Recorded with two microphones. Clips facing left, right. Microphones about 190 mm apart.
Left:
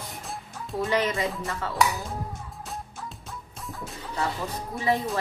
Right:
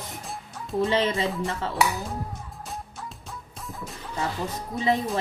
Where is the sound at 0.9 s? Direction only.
25° right (ahead or behind).